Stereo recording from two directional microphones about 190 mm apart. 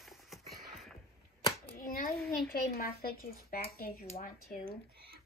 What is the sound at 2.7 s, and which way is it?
Speech, 50° left (ahead or behind).